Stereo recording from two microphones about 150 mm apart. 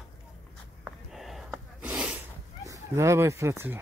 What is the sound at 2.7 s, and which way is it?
Speech, 20° right (ahead or behind).